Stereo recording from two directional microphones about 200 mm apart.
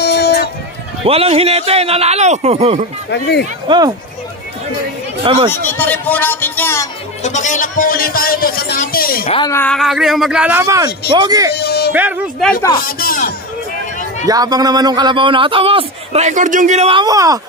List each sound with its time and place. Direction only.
0.0 s a sound: 55° left (ahead or behind)
1.0 s speech: 30° right (ahead or behind)
3.1 s speech: 55° left (ahead or behind)
3.6 s speech: 20° right (ahead or behind)
5.5 s speech: 10° left (ahead or behind)
7.2 s speech: 35° left (ahead or behind)
9.5 s speech: 5° left (ahead or behind); by 11.5 s 20° right (ahead or behind)
11.5 s a sound: 55° left (ahead or behind)
11.9 s speech: 10° right (ahead or behind)
12.8 s speech: 45° left (ahead or behind)
14.2 s speech: 20° right (ahead or behind); by 17.0 s 35° right (ahead or behind)
17.0 s speech: 15° right (ahead or behind)